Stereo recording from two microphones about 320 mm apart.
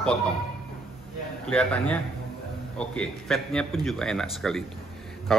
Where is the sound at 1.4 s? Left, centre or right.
Centre.